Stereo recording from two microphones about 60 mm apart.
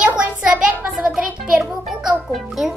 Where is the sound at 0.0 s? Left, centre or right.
Centre.